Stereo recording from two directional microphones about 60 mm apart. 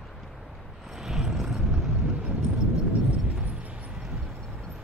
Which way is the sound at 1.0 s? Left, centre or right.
Centre.